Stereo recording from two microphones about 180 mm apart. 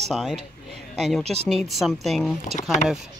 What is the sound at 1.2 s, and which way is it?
Speech, 35° right (ahead or behind).